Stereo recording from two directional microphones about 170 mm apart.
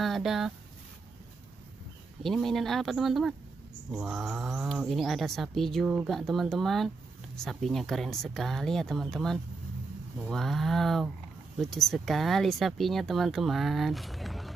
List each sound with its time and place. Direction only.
0.0 s speech: centre (ahead or behind)
2.2 s speech: centre (ahead or behind)